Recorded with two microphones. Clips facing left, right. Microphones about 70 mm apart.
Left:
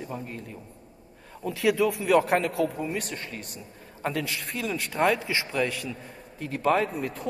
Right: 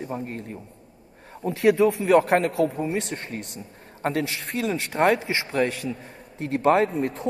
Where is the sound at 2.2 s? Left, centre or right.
Right.